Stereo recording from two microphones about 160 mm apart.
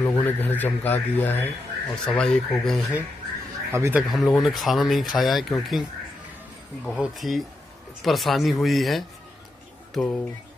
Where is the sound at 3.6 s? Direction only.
15° right (ahead or behind).